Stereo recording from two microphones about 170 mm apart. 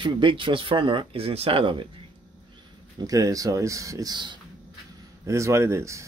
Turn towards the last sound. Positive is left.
turn(degrees=-15)  # may be behind; listen again after turning